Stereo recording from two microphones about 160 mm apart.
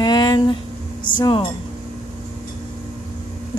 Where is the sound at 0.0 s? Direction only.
25° left (ahead or behind).